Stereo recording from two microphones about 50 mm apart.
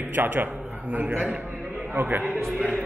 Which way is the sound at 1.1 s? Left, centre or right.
Centre.